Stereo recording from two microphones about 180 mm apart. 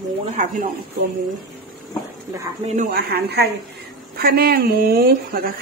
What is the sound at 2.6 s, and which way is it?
A woman's voice, 45° right (ahead or behind).